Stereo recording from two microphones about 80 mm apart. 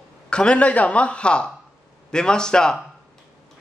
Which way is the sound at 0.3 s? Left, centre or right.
Centre.